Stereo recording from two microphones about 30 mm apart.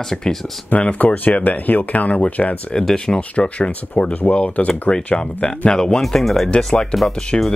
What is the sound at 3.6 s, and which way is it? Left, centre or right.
Speech, left.